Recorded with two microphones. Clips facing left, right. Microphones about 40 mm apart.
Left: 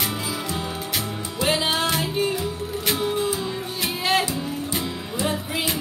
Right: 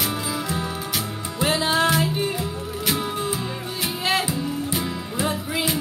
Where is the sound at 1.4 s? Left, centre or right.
Centre.